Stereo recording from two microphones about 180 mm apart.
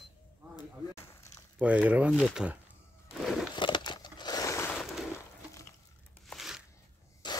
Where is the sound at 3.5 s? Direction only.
25° left (ahead or behind).